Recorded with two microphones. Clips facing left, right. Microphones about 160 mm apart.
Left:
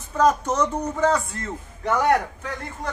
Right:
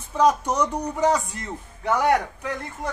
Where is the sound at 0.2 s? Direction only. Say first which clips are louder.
Even; 10° right (ahead or behind).